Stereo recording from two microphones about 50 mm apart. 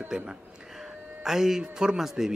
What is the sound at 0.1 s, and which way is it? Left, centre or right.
Speech, centre.